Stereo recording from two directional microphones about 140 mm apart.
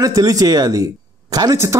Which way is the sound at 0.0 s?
25° right (ahead or behind).